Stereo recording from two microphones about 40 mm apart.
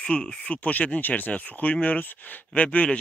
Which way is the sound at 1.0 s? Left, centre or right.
Left.